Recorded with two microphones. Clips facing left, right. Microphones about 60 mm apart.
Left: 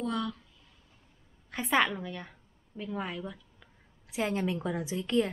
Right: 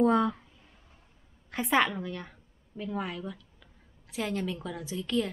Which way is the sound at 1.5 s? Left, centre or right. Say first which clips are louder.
Right 1 dB; centre.